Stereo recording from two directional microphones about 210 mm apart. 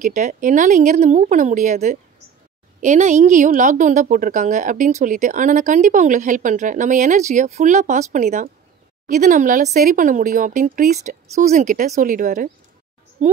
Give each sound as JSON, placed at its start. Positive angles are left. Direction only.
{"t": 0.0, "sound": "a woman's voice", "side_deg": -40}